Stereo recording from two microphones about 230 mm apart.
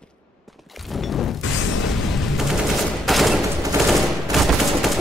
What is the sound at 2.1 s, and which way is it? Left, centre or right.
Gunshot, centre.